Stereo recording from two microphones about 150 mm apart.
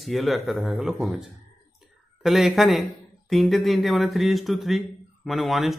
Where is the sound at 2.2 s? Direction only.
Centre (ahead or behind).